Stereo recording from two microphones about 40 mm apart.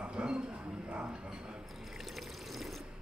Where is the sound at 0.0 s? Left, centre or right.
Right.